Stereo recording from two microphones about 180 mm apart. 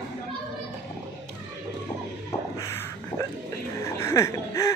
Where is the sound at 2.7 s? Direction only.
15° left (ahead or behind).